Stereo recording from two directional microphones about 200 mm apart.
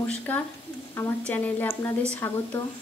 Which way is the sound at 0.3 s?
10° left (ahead or behind).